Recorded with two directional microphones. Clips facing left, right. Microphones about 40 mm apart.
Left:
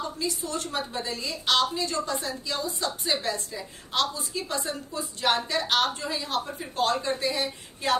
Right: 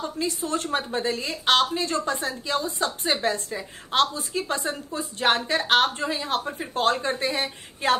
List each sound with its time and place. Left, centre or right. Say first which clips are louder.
0.2 s a woman's voice: right 7 dB; right